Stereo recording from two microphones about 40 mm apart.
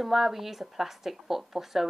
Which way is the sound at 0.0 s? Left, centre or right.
Centre.